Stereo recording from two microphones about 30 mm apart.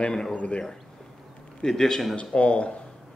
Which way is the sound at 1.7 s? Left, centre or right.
Centre.